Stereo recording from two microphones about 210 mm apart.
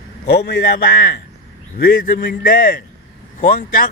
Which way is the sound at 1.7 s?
45° left (ahead or behind).